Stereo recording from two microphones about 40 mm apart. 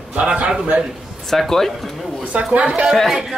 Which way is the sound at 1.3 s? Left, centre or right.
Centre.